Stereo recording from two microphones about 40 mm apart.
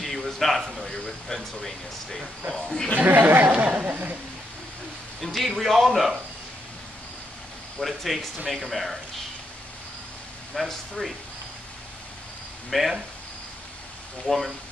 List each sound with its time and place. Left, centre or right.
0.0 s a sound: centre
0.9 s speech: centre
3.0 s speech: right
5.2 s a man's voice: centre
7.8 s a man's voice: centre
10.5 s a man's voice: centre
12.6 s speech: centre
14.2 s a man's voice: centre